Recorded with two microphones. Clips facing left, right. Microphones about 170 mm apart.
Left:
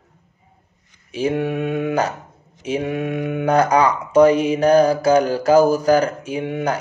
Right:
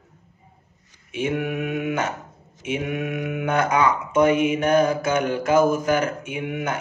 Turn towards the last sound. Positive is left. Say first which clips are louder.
# left 5 dB
turn(degrees=35)  # may be behind; listen again after turning